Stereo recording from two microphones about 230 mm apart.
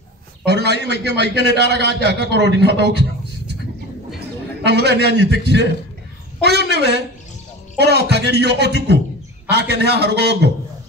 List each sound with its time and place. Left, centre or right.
0.5 s a man's voice: right
4.6 s speech: right
6.4 s speech: right